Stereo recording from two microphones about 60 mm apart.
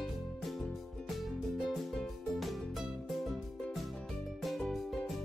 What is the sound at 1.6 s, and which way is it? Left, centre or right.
Music, centre.